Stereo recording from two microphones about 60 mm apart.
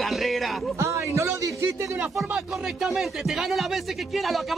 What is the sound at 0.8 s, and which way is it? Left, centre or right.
Speech, right.